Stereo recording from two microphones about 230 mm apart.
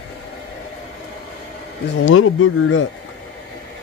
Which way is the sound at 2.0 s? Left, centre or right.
Left.